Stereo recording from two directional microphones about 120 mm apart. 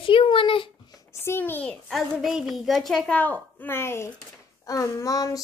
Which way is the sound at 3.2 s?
15° left (ahead or behind).